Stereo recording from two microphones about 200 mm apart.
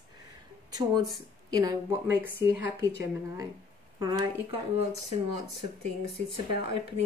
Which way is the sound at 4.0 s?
20° right (ahead or behind).